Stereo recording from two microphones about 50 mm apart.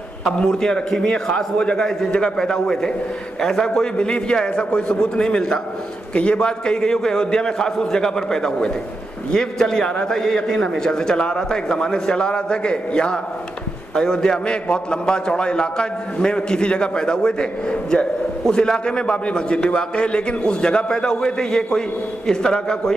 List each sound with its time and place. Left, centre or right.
0.4 s a man's voice: centre